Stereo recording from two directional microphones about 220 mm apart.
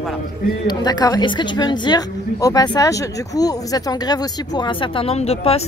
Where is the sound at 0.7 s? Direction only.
20° left (ahead or behind).